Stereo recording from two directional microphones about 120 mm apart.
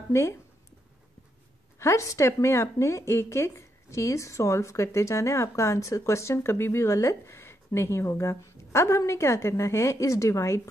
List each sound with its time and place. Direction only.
1.8 s a woman's voice: 25° left (ahead or behind)